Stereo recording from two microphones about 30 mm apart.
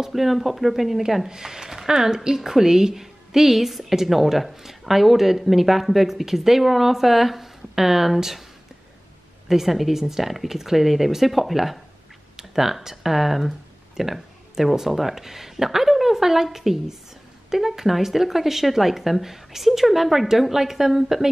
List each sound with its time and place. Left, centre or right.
0.0 s speech: centre
1.3 s a woman's voice: centre
9.5 s a woman's voice: centre